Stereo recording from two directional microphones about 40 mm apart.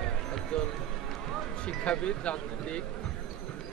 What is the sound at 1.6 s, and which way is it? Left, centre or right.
Speech, left.